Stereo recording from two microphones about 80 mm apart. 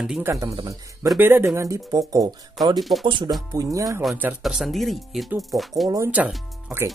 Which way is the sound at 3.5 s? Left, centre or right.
Right.